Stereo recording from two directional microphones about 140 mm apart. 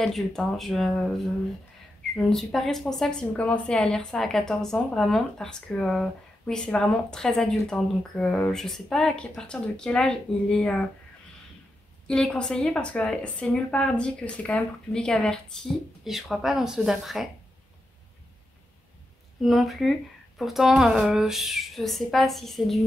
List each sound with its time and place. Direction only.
0.0 s a woman's voice: 5° left (ahead or behind)
12.1 s a woman's voice: 5° left (ahead or behind)
19.4 s a woman's voice: centre (ahead or behind)